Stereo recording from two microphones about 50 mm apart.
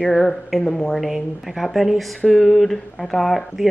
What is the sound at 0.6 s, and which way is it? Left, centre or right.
A woman's voice, centre.